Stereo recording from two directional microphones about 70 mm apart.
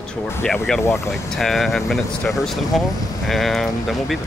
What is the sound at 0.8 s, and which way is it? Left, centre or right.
Speech, left.